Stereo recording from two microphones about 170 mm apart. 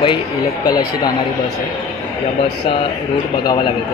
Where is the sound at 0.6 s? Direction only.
20° left (ahead or behind).